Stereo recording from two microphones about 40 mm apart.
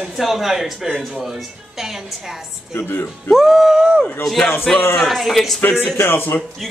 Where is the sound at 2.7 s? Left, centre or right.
Left.